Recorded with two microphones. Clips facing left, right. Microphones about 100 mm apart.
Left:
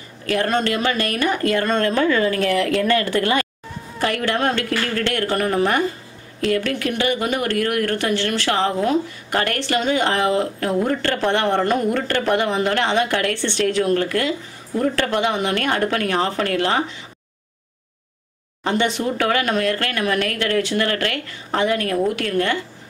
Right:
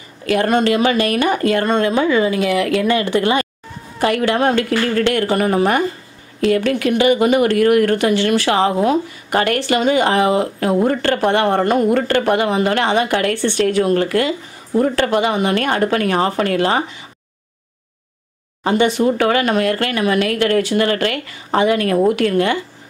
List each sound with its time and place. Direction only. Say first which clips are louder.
0.3 s speech: right 5 dB; 10° right (ahead or behind)
3.0 s speech: right 3 dB; 20° right (ahead or behind)
18.6 s speech: right 5 dB; 5° right (ahead or behind)
21.6 s a woman's voice: right 4 dB; 90° right
22.1 s speech: right 5 dB; 5° right (ahead or behind)